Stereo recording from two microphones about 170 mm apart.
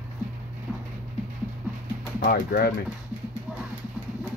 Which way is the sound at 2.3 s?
60° left (ahead or behind).